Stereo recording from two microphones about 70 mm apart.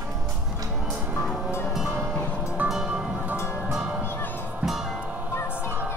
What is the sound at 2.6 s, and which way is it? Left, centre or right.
Music, centre.